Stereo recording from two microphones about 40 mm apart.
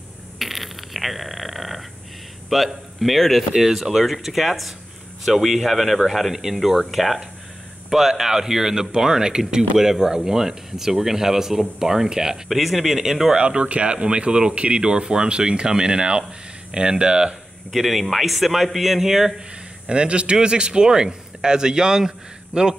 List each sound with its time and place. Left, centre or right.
0.4 s a sound: centre
2.5 s speech: centre
12.4 s speech: centre
13.4 s speech: right
17.7 s speech: centre
19.9 s speech: right